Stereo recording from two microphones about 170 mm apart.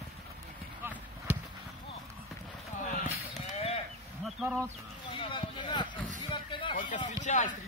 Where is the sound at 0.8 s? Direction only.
10° right (ahead or behind).